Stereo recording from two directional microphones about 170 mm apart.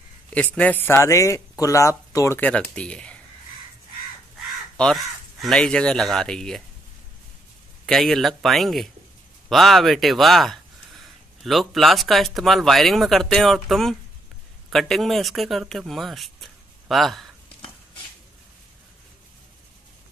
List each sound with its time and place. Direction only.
0.6 s speech: 10° left (ahead or behind)
4.7 s speech: centre (ahead or behind)
7.8 s speech: centre (ahead or behind)